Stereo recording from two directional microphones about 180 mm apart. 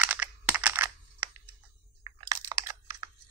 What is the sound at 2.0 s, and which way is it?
Crunch, 20° right (ahead or behind).